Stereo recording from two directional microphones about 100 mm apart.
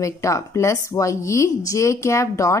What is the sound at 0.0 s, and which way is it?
A woman's voice, 30° left (ahead or behind).